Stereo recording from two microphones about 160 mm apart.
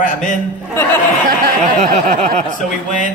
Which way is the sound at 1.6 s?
45° right (ahead or behind).